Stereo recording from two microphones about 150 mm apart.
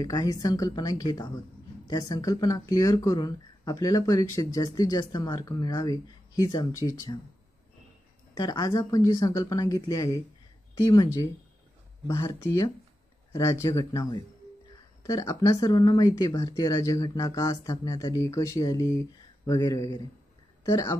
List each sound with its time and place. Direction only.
0.0 s speech: 25° left (ahead or behind)
8.4 s speech: 25° left (ahead or behind)